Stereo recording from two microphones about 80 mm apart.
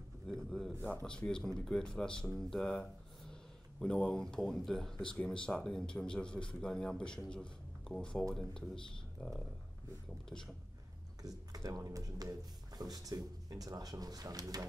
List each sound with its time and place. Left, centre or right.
0.3 s a sound: centre
1.0 s speech: centre
11.2 s speech: right